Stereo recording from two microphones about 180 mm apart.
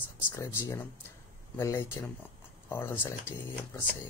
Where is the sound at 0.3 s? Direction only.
15° left (ahead or behind).